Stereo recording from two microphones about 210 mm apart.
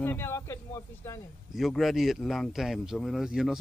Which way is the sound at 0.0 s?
10° left (ahead or behind).